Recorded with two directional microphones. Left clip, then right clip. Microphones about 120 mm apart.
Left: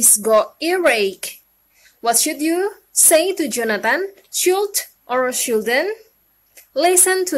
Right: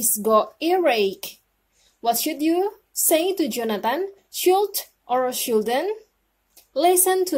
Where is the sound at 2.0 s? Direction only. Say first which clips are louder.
Left 3 dB; 25° right (ahead or behind).